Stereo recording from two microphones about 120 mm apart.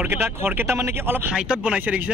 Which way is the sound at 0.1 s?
20° right (ahead or behind).